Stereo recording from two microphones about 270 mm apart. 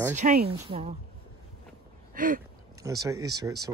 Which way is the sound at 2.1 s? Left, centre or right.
Right.